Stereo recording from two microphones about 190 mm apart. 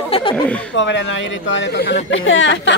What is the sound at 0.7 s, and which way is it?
Speech, 70° left (ahead or behind).